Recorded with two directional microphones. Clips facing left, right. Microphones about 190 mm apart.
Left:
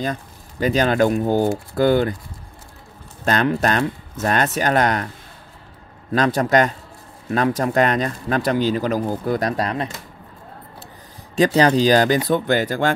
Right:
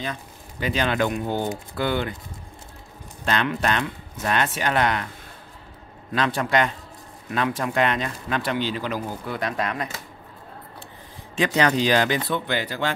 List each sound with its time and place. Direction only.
0.0 s speech: 40° left (ahead or behind)
3.3 s speech: 45° left (ahead or behind)
6.1 s speech: 40° left (ahead or behind)
11.3 s speech: 35° left (ahead or behind)